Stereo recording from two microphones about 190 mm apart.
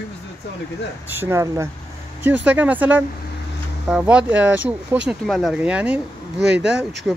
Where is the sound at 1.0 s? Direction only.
10° right (ahead or behind).